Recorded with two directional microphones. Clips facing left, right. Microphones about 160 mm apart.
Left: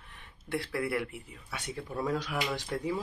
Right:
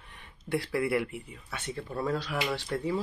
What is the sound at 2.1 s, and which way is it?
Speech, 10° left (ahead or behind).